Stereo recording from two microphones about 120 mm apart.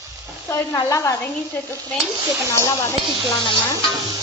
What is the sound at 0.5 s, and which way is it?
Stir, 25° left (ahead or behind).